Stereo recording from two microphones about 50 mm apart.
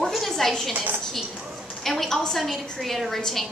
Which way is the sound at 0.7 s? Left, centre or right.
Right.